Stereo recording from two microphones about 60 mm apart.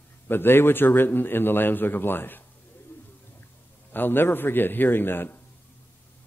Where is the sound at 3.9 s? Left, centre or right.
Left.